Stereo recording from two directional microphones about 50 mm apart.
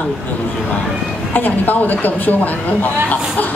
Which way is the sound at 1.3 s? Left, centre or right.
Left.